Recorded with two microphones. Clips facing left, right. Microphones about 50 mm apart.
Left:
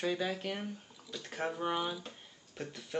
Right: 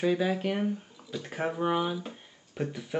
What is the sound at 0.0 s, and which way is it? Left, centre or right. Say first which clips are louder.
Speech: right 7 dB; centre.